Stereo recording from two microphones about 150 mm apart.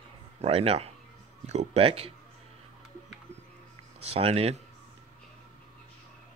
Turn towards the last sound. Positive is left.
turn(degrees=-45)  # may be behind; listen again after turning